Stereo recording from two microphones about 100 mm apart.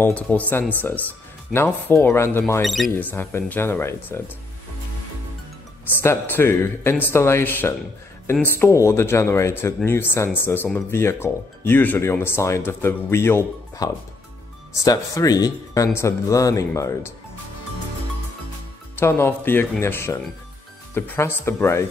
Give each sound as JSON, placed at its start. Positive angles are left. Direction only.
{"t": 0.0, "sound": "speech", "side_deg": 15}
{"t": 2.6, "sound": "speech", "side_deg": 0}
{"t": 2.9, "sound": "speech", "side_deg": 20}
{"t": 5.9, "sound": "speech", "side_deg": 20}
{"t": 13.8, "sound": "speech", "side_deg": 40}
{"t": 18.9, "sound": "speech", "side_deg": 25}